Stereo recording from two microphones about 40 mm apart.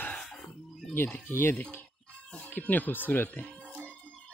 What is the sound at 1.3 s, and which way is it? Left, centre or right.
Speech, left.